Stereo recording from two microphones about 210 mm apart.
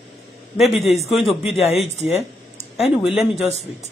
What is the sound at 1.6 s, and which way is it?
Speech, 30° left (ahead or behind).